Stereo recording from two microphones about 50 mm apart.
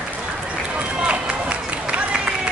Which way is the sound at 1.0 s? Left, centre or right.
Right.